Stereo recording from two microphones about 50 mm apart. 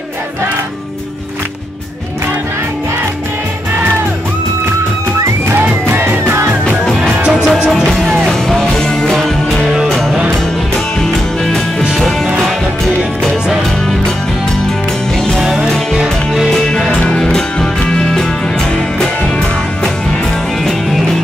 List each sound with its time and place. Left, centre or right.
5.5 s music: right
6.2 s music: right
7.2 s music: centre
7.7 s music: centre
15.1 s music: centre
15.4 s music: centre
16.3 s music: centre